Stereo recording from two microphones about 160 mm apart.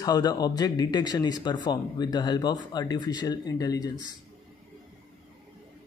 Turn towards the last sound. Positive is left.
turn(degrees=25)  # may be behind; listen again after turning